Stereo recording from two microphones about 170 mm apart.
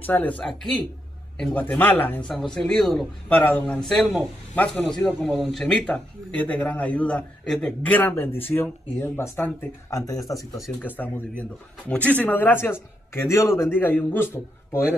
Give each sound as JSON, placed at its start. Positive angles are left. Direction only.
{"t": 0.0, "sound": "speech", "side_deg": 10}
{"t": 4.6, "sound": "speech", "side_deg": 10}